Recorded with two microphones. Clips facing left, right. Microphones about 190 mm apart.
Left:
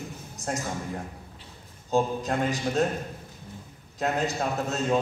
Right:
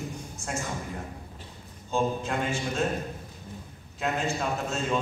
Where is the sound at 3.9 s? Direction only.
40° left (ahead or behind).